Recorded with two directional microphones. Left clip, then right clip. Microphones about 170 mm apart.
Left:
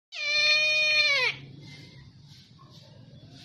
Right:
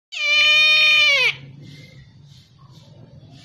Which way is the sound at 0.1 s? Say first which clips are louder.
Right 9 dB; 20° left (ahead or behind).